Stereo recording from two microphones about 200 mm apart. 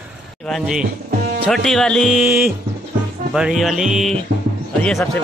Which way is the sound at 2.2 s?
5° right (ahead or behind).